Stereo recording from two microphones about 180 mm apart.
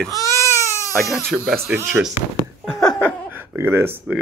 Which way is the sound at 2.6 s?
5° left (ahead or behind).